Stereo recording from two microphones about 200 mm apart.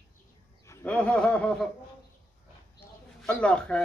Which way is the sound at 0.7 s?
10° left (ahead or behind).